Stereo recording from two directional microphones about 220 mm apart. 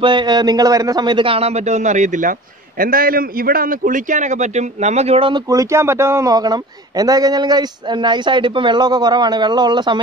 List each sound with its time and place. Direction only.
0.0 s a man's voice: 20° right (ahead or behind)